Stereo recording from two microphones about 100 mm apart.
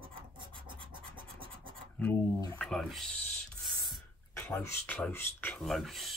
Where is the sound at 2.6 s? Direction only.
Centre (ahead or behind).